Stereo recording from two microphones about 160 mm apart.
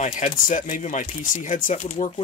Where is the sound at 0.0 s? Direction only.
50° left (ahead or behind).